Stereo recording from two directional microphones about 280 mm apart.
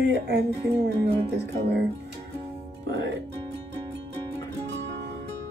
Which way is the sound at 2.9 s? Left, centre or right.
Right.